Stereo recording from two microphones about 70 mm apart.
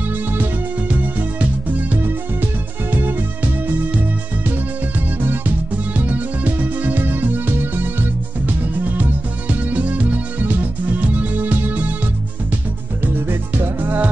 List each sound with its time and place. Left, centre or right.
0.1 s music: right
2.9 s music: right
13.3 s music: right